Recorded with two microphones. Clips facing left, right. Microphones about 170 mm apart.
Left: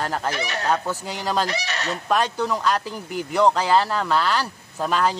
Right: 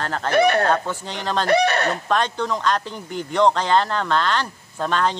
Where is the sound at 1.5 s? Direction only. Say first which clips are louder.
Right 10 dB; 55° right (ahead or behind).